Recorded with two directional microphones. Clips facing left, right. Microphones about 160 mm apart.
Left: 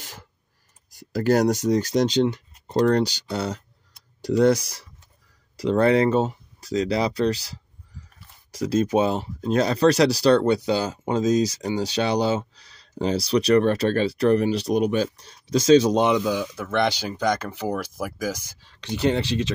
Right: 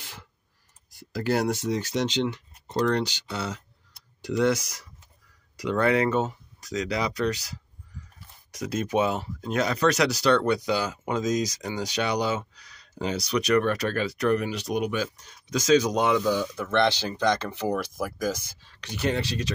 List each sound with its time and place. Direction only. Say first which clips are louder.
0.9 s speech: left 6 dB; 40° left (ahead or behind)
16.1 s speech: left 2 dB; 10° left (ahead or behind)
18.8 s speech: left 5 dB; 30° left (ahead or behind)